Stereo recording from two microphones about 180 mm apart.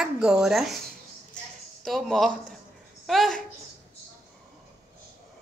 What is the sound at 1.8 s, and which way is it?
A woman's voice, centre (ahead or behind).